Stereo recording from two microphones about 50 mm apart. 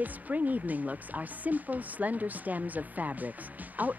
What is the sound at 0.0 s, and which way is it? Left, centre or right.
Speech, right.